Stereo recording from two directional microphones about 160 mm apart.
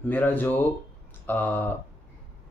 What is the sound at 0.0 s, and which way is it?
Speech, 10° left (ahead or behind).